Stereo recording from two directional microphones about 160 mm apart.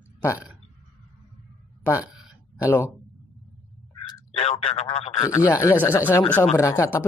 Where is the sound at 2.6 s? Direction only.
15° left (ahead or behind).